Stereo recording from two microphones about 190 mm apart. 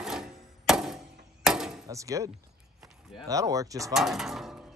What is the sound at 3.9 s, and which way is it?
Speech, centre (ahead or behind).